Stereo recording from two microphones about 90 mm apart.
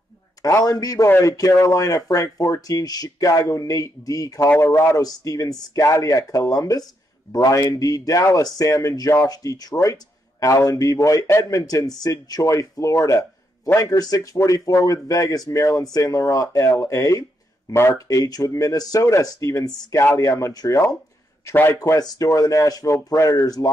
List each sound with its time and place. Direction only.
0.4 s speech: 40° left (ahead or behind)